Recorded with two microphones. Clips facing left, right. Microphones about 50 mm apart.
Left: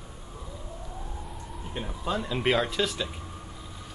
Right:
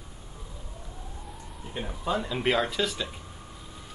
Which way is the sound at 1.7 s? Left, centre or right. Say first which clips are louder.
Right 1 dB; centre.